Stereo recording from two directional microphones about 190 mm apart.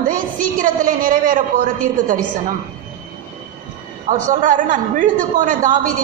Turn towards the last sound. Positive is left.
turn(degrees=-45)  # may be behind; listen again after turning